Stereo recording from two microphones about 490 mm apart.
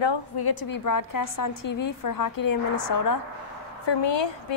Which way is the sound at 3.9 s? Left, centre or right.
Left.